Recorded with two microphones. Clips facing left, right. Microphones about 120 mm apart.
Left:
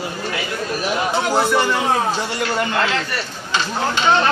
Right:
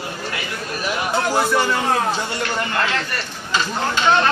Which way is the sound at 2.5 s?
20° left (ahead or behind).